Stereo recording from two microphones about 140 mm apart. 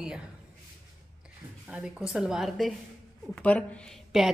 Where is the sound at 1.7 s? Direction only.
5° right (ahead or behind).